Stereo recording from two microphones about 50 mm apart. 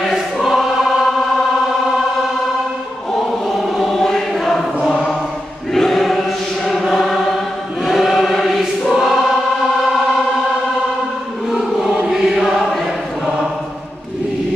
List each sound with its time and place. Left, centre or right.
0.4 s choir: centre
3.8 s choir: centre
5.8 s choir: centre
12.0 s choir: centre